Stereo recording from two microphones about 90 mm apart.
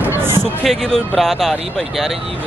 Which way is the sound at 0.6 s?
5° left (ahead or behind).